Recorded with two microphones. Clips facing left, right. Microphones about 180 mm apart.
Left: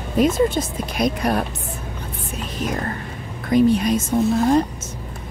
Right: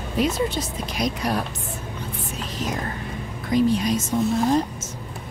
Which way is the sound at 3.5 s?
55° left (ahead or behind).